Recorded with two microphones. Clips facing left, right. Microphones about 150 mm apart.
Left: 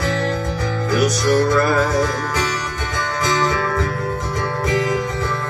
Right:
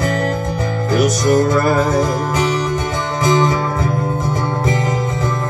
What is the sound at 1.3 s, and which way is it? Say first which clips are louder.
Music: right 2 dB; 20° right (ahead or behind).